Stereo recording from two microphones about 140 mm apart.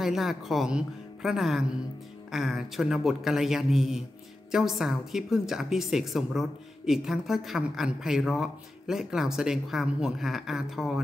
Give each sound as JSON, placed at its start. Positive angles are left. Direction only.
{"t": 0.0, "sound": "a woman's voice", "side_deg": 0}